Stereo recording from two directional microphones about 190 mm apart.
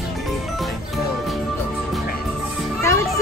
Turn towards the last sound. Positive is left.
turn(degrees=15)  # may be behind; listen again after turning